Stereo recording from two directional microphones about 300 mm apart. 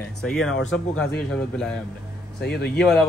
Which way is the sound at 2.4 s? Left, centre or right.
Left.